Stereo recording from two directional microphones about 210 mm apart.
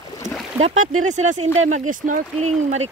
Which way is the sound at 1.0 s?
35° right (ahead or behind).